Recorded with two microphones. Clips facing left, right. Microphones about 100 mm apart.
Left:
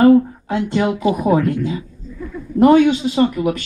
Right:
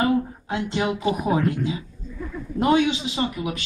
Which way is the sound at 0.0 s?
50° left (ahead or behind).